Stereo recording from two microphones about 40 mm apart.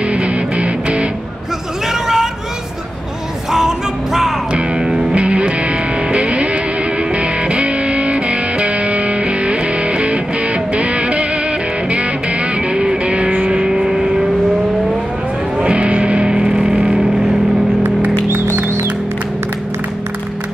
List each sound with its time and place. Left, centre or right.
0.0 s music: right
1.9 s hubbub: centre
3.5 s music: centre
4.5 s music: right
13.7 s vehicle: centre
15.6 s music: right